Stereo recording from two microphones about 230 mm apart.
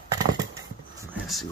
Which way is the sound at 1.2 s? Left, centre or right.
Centre.